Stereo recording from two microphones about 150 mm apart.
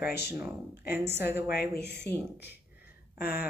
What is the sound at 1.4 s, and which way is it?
Speech, 90° left.